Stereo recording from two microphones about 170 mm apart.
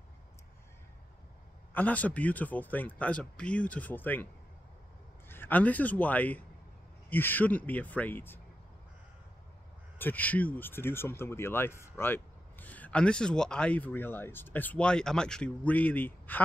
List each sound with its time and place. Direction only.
1.7 s speech: 10° left (ahead or behind)
5.3 s speech: 10° left (ahead or behind)
9.9 s speech: 10° left (ahead or behind)